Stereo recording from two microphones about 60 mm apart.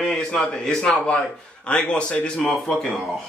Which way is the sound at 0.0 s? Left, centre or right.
Centre.